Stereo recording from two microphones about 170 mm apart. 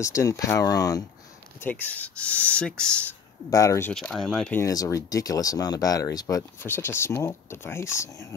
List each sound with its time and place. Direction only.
0.0 s speech: 20° left (ahead or behind)
1.6 s speech: 10° left (ahead or behind)
3.4 s speech: 20° left (ahead or behind)
3.9 s speech: 5° left (ahead or behind)
4.6 s speech: 20° left (ahead or behind)